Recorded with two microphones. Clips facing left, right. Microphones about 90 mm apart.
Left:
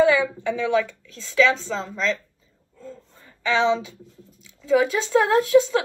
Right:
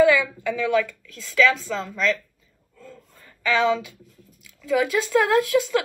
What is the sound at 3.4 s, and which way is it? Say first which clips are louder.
Speech: even; 30° left (ahead or behind).